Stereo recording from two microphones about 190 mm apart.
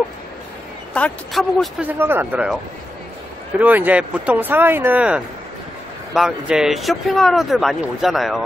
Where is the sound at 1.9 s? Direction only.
10° right (ahead or behind).